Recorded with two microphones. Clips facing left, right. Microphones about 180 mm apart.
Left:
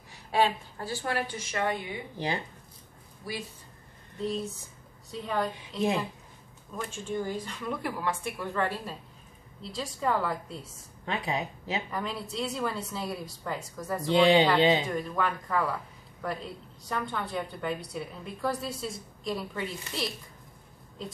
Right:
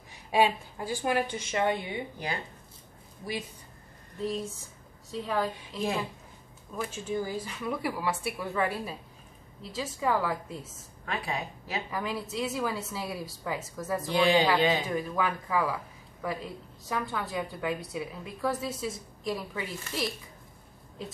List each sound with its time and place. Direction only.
0.1 s a woman's voice: 15° right (ahead or behind)
2.1 s a woman's voice: 25° left (ahead or behind)
4.2 s a woman's voice: centre (ahead or behind)
11.1 s a woman's voice: 20° left (ahead or behind)
11.9 s a woman's voice: 5° right (ahead or behind)
14.0 s a woman's voice: 25° left (ahead or behind)
14.9 s a woman's voice: 5° right (ahead or behind)